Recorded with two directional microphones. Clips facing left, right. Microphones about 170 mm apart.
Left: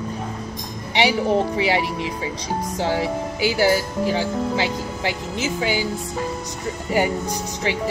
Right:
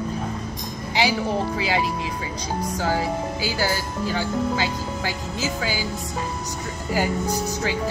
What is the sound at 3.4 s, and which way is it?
Speech, 15° left (ahead or behind).